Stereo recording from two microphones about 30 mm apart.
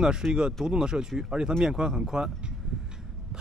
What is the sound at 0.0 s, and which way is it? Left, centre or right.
Speech, right.